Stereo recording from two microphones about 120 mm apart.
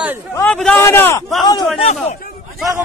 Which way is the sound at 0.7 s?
20° left (ahead or behind).